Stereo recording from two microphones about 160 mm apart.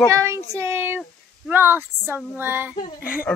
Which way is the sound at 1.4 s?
10° right (ahead or behind).